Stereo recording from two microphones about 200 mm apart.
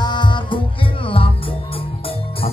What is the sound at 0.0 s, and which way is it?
Music, 20° left (ahead or behind).